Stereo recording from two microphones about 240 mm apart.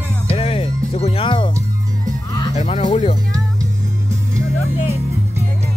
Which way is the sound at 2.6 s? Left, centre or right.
Left.